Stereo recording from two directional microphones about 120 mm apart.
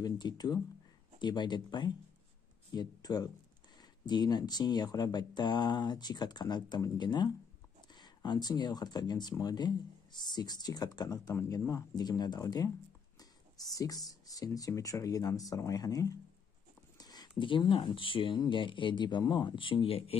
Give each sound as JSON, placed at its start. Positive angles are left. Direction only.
{"t": 0.0, "sound": "speech", "side_deg": 35}
{"t": 17.0, "sound": "a sound", "side_deg": 35}
{"t": 17.4, "sound": "speech", "side_deg": 45}